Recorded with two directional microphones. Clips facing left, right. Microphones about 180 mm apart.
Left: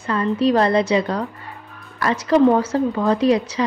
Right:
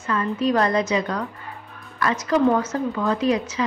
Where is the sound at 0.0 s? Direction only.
35° left (ahead or behind).